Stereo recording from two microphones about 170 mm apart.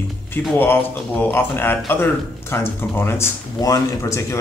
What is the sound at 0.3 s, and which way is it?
Speech, 10° left (ahead or behind).